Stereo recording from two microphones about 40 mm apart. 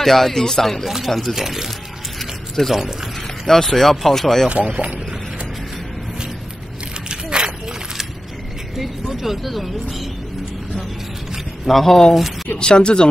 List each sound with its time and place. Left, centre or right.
0.0 s speech: centre
0.8 s speech: centre
2.1 s a sound: centre
2.7 s speech: centre
3.4 s speech: centre
4.5 s speech: right
7.1 s a sound: right
8.7 s speech: centre
11.6 s speech: centre
12.5 s speech: left